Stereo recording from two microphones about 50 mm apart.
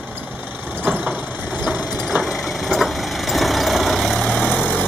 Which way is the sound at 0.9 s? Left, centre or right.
Right.